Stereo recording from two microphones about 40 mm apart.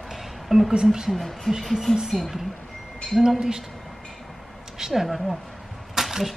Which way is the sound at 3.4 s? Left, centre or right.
Centre.